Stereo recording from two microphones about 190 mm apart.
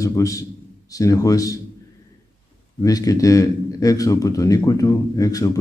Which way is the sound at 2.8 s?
20° left (ahead or behind).